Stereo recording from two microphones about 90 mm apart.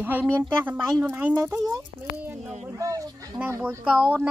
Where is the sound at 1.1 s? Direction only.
20° right (ahead or behind).